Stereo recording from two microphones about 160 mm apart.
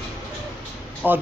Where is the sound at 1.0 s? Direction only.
10° right (ahead or behind).